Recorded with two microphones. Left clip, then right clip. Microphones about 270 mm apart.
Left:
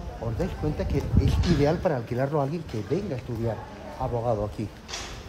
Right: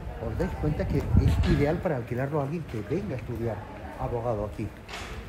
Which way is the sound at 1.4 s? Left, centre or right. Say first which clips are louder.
Left 3 dB; left.